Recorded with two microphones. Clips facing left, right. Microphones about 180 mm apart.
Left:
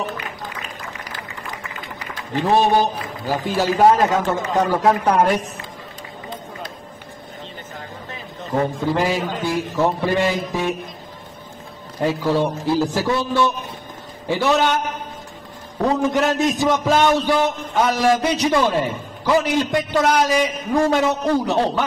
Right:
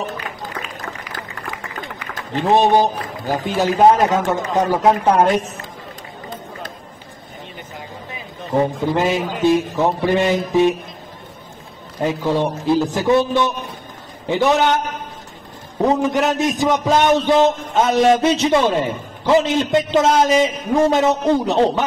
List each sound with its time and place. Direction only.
2.3 s a man's voice: 20° right (ahead or behind)
8.9 s a man's voice: 20° right (ahead or behind)
12.0 s a man's voice: 20° right (ahead or behind)
15.8 s a man's voice: 20° right (ahead or behind)